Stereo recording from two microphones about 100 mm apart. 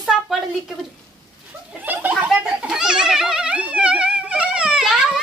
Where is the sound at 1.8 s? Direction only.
15° right (ahead or behind).